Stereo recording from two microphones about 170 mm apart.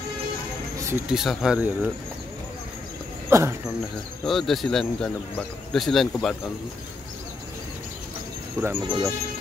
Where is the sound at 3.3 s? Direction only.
15° right (ahead or behind).